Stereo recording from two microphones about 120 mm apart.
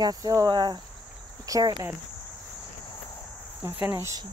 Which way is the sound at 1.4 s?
30° right (ahead or behind).